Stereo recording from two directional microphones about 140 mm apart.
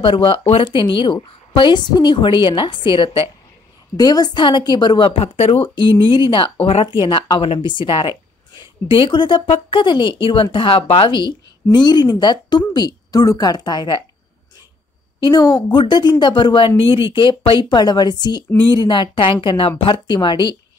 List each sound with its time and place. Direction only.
0.0 s speech: 40° left (ahead or behind)
5.8 s speech: 35° left (ahead or behind)
15.2 s speech: 30° left (ahead or behind)